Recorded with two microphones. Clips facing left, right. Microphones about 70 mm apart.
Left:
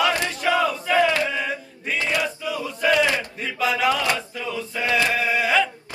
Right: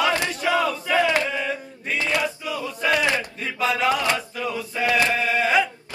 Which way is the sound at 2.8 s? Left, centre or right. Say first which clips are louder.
Left 2 dB; right.